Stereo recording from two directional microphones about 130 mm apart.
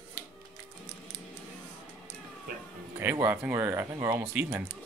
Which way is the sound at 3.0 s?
15° right (ahead or behind).